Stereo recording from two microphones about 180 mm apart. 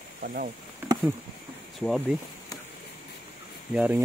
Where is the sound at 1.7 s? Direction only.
Centre (ahead or behind).